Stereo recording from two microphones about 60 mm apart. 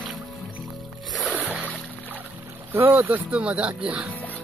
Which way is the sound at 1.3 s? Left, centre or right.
Right.